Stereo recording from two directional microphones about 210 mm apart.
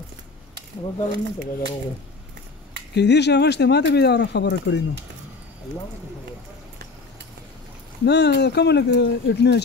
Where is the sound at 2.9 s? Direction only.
55° left (ahead or behind).